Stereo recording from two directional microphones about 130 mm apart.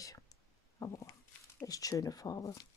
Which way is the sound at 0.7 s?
25° left (ahead or behind).